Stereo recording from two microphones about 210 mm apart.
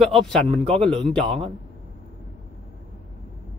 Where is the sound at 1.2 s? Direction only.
25° right (ahead or behind).